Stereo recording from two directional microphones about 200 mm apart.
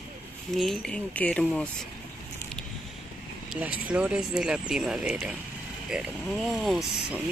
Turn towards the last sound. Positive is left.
turn(degrees=0)  # may be behind; listen again after turning